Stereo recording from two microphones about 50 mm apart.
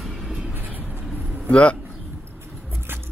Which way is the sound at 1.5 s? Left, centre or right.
Left.